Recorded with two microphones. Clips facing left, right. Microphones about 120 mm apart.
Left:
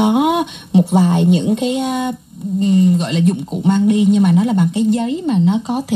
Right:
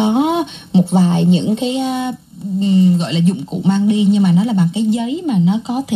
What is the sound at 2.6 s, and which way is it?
Speech, 50° left (ahead or behind).